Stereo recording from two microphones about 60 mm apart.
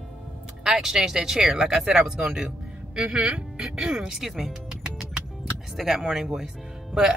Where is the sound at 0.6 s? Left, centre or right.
Centre.